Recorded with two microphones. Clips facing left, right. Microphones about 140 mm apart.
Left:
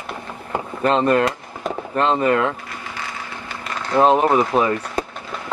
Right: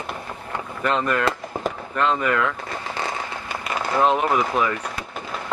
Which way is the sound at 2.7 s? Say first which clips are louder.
Right 4 dB; 35° right (ahead or behind).